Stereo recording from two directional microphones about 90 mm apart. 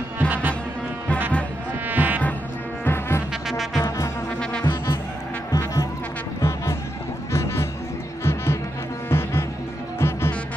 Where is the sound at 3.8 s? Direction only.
40° left (ahead or behind).